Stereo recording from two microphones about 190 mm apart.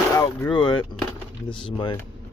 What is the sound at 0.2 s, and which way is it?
Speech, 20° left (ahead or behind).